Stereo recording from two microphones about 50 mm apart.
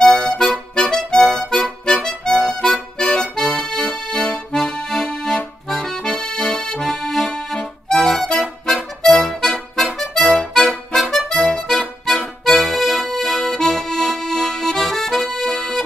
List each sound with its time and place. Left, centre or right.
0.0 s music: centre
5.7 s accordion: centre
8.3 s music: centre
9.0 s accordion: centre
10.5 s music: centre
12.8 s accordion: centre